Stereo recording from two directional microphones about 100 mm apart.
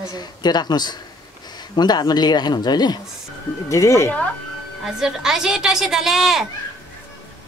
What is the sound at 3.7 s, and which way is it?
Speech, 30° left (ahead or behind).